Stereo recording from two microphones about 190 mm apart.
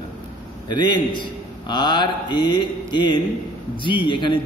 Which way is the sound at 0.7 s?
25° left (ahead or behind).